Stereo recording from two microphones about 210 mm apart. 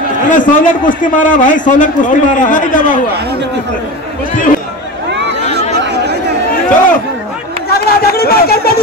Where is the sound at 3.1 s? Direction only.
50° right (ahead or behind).